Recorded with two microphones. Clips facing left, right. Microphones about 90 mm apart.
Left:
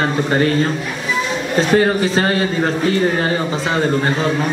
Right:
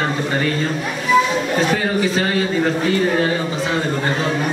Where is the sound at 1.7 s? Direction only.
50° left (ahead or behind).